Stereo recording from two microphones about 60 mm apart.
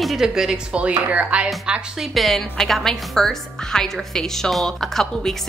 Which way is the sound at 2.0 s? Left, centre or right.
Centre.